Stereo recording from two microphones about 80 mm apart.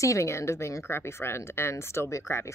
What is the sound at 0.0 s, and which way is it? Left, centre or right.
Speech, left.